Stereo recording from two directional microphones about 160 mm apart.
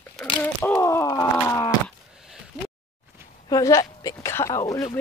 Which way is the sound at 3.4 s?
20° left (ahead or behind).